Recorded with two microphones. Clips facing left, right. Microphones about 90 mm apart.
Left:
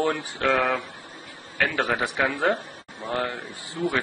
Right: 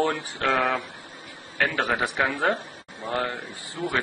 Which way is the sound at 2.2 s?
20° right (ahead or behind).